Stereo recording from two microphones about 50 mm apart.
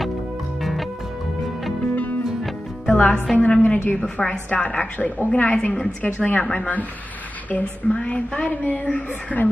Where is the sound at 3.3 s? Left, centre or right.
Left.